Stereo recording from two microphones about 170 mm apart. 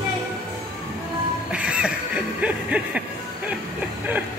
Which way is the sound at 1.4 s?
5° right (ahead or behind).